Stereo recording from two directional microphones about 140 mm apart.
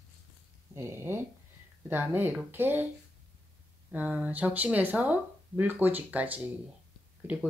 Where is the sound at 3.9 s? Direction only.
10° right (ahead or behind).